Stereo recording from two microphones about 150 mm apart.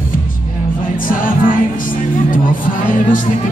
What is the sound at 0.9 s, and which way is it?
Music, 65° left (ahead or behind).